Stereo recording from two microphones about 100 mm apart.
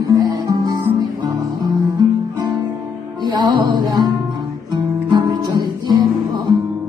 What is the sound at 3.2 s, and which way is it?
Music, 50° right (ahead or behind).